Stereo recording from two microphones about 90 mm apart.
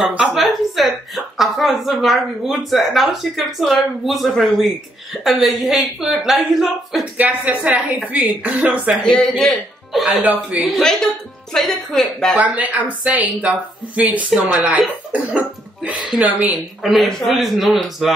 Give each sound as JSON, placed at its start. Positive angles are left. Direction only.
{"t": 0.1, "sound": "a woman's voice", "side_deg": -5}
{"t": 7.2, "sound": "speech", "side_deg": -15}
{"t": 9.1, "sound": "a woman's voice", "side_deg": 5}
{"t": 10.2, "sound": "a man's voice", "side_deg": -20}
{"t": 10.6, "sound": "a woman's voice", "side_deg": 5}
{"t": 12.4, "sound": "speech", "side_deg": -15}
{"t": 16.8, "sound": "a woman's voice", "side_deg": 0}